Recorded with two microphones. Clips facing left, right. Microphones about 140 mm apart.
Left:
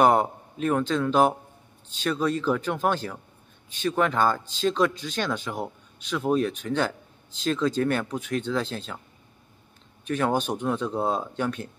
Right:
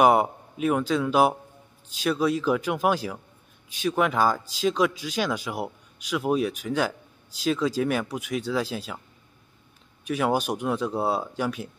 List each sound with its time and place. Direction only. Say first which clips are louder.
0.0 s speech: right 1 dB; 10° right (ahead or behind)
10.0 s speech: even; 5° right (ahead or behind)